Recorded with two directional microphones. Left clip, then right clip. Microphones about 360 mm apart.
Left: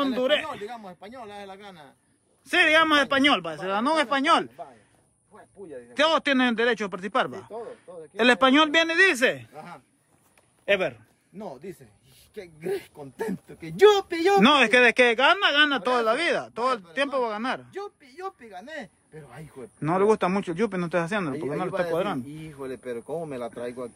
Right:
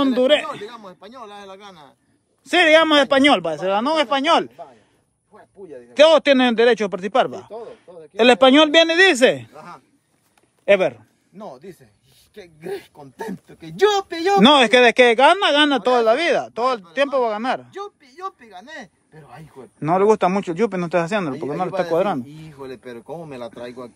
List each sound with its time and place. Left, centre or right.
0.0 s speech: centre
0.7 s speech: centre
5.9 s speech: centre
11.3 s speech: centre; by 23.5 s right